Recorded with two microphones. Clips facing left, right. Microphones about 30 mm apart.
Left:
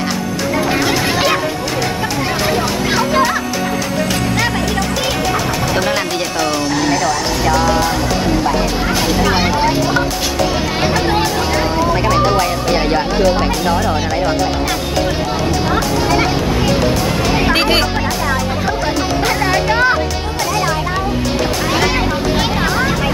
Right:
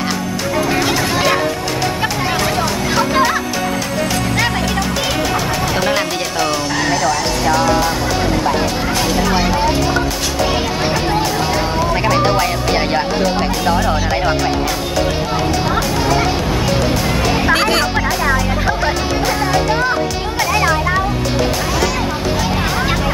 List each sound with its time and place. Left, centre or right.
0.7 s hubbub: centre
1.1 s music: centre
2.5 s music: centre
5.3 s music: centre
9.0 s a sound: centre
11.9 s speech: centre
15.6 s speech: centre
16.4 s music: centre
17.5 s music: centre